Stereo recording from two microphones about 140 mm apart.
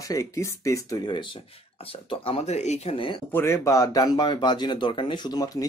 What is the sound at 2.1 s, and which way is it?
Speech, 40° left (ahead or behind).